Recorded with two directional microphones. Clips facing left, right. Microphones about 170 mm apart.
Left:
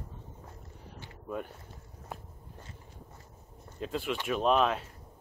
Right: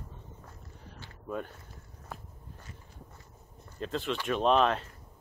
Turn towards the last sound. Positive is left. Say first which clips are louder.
# right 1 dB
turn(degrees=5)  # may be behind; listen again after turning